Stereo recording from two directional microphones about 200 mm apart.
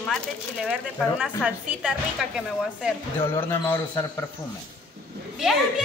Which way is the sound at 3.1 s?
10° left (ahead or behind).